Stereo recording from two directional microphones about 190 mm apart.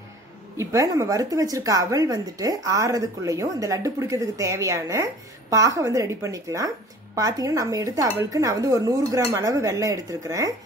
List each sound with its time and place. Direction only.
0.6 s a woman's voice: 15° right (ahead or behind)